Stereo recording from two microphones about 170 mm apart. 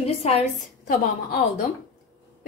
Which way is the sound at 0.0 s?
40° left (ahead or behind).